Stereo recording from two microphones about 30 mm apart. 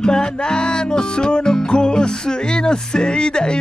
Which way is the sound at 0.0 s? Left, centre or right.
Left.